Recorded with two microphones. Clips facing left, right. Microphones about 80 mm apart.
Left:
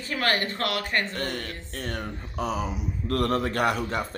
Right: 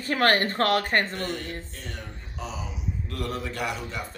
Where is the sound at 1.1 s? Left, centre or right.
Left.